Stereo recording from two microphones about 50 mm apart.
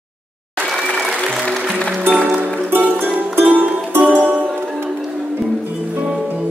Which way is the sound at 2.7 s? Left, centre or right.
Right.